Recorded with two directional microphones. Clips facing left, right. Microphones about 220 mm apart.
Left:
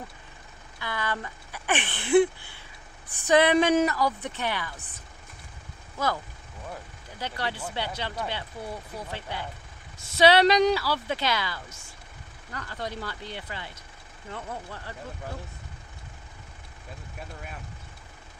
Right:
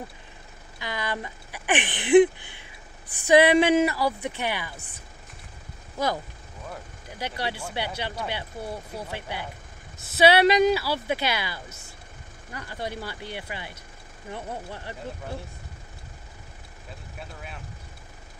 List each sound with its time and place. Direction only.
0.7 s speech: 15° right (ahead or behind)
7.2 s speech: 15° right (ahead or behind)